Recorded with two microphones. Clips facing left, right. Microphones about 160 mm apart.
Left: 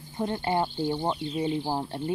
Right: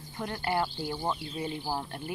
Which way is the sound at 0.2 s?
20° left (ahead or behind).